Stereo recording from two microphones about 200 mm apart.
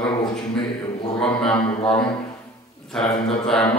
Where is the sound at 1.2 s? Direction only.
5° left (ahead or behind).